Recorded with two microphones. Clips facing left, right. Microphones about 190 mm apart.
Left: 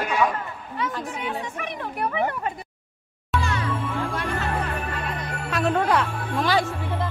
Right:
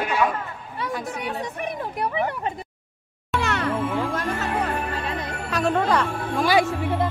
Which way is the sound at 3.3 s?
70° right (ahead or behind).